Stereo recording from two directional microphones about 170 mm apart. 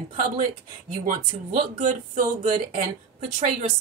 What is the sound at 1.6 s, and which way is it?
Speech, 50° right (ahead or behind).